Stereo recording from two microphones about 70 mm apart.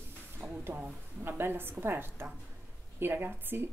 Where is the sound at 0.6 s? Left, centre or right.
Right.